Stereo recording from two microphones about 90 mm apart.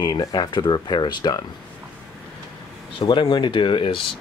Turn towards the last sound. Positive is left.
turn(degrees=70)  # may be behind; listen again after turning